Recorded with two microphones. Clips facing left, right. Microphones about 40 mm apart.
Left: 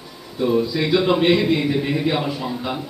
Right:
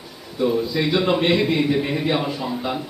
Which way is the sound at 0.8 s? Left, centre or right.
Centre.